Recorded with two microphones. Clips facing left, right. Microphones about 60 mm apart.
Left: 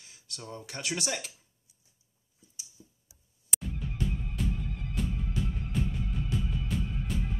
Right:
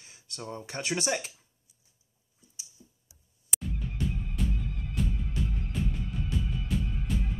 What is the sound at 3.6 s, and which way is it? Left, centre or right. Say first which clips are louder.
Music: right 1 dB; centre.